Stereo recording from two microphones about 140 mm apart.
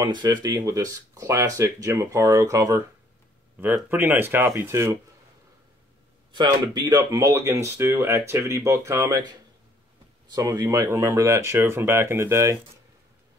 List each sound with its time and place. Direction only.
0.0 s speech: 30° right (ahead or behind)
6.3 s speech: 30° right (ahead or behind)
10.3 s speech: 25° right (ahead or behind)